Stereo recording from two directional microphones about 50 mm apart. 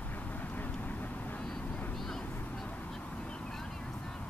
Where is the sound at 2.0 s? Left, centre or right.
Centre.